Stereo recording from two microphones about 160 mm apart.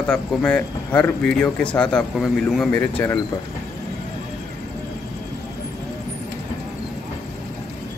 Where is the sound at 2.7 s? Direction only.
10° left (ahead or behind).